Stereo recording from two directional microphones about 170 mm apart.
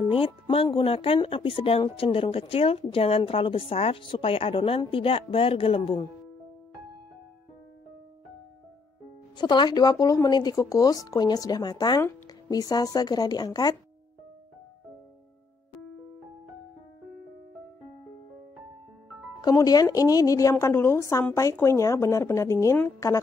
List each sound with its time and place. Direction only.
0.1 s speech: 35° left (ahead or behind)
9.4 s speech: 25° left (ahead or behind)
19.4 s a woman's voice: 20° left (ahead or behind)